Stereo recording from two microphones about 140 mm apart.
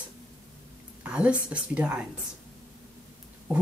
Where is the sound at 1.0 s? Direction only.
10° right (ahead or behind).